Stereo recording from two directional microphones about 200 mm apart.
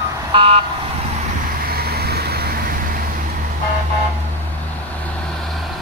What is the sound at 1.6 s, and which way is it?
Vehicle, 50° right (ahead or behind).